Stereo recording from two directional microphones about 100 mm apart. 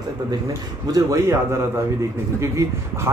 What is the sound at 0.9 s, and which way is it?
A man's voice, 35° right (ahead or behind).